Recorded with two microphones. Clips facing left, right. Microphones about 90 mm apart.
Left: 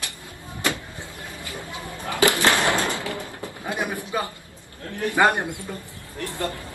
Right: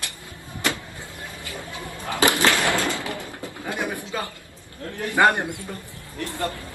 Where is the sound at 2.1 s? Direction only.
25° right (ahead or behind).